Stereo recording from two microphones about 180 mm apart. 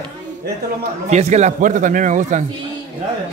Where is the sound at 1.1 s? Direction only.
40° right (ahead or behind).